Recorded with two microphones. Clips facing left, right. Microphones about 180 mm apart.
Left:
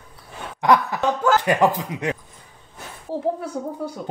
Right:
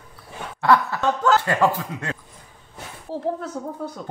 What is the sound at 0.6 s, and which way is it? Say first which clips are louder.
A child's voice: left 1 dB; 15° left (ahead or behind).